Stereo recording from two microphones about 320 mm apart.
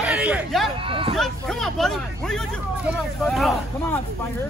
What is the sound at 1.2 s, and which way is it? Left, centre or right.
Speech, centre.